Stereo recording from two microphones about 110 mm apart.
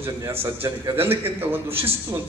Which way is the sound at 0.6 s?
20° right (ahead or behind).